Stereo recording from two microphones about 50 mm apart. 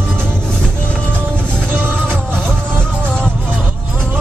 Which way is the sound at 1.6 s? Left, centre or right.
Right.